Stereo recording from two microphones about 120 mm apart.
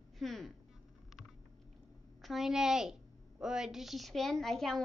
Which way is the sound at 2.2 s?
Centre (ahead or behind).